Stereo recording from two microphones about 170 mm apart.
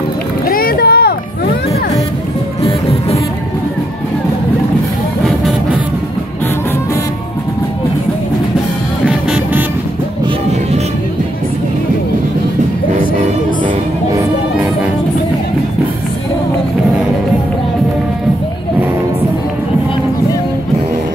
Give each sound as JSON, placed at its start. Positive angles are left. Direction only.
{"t": 0.5, "sound": "boat", "side_deg": 60}
{"t": 2.6, "sound": "music", "side_deg": 35}
{"t": 5.2, "sound": "music", "side_deg": 0}
{"t": 9.0, "sound": "music", "side_deg": -10}